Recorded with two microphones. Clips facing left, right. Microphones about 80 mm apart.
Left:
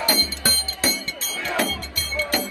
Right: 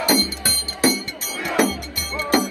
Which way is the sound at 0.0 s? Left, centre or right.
Right.